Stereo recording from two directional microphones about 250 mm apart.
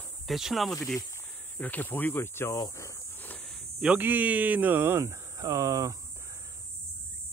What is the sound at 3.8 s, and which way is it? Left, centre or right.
Speech, centre.